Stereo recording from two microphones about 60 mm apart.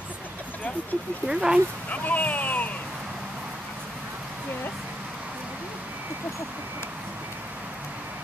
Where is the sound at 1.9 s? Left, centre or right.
Left.